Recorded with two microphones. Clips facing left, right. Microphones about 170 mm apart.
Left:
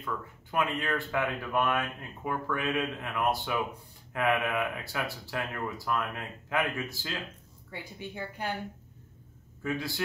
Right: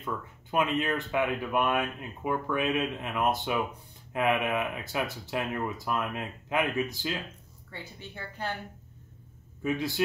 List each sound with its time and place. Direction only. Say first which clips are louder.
0.0 s speech: right 1 dB; 20° right (ahead or behind)
7.7 s a woman's voice: left 3 dB; 15° left (ahead or behind)
9.6 s a man's voice: right 3 dB; 20° right (ahead or behind)